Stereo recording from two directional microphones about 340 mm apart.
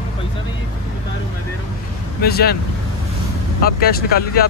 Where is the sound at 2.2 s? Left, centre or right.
Left.